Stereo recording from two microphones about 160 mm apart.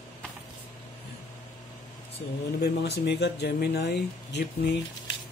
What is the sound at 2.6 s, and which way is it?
Speech, 90° left.